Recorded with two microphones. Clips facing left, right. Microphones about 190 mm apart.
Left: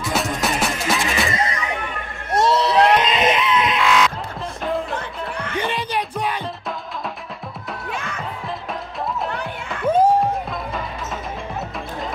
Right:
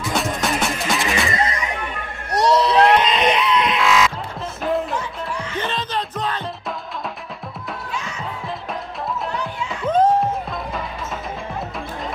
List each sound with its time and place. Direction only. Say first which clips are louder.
0.0 s music: even; centre (ahead or behind)
2.3 s basketball bounce: right 1 dB; centre (ahead or behind)
2.7 s music: right 1 dB; centre (ahead or behind)
4.9 s music: right 1 dB; 60° left (ahead or behind)
5.6 s music: left 2 dB; 10° left (ahead or behind)
7.9 s music: left 2 dB; 55° left (ahead or behind)
9.3 s music: right 2 dB; 55° left (ahead or behind)
9.8 s a sound: left 1 dB; 10° left (ahead or behind)